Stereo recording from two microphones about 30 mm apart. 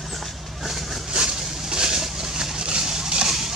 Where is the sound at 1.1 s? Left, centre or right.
Right.